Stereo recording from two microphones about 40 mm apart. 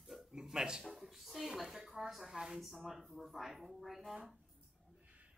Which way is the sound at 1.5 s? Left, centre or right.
Centre.